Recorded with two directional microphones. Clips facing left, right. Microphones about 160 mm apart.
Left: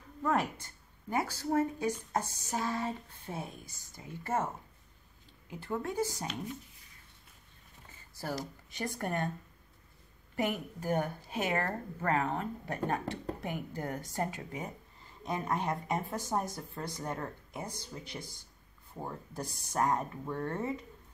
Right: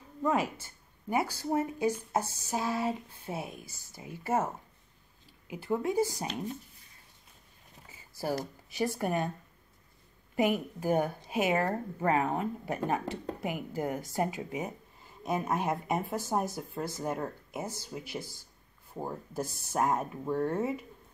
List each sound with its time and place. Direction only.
0.2 s speech: 5° right (ahead or behind)
5.5 s speech: 10° right (ahead or behind)
7.9 s a sound: 10° right (ahead or behind)
8.6 s speech: 5° right (ahead or behind)
10.3 s speech: 15° right (ahead or behind)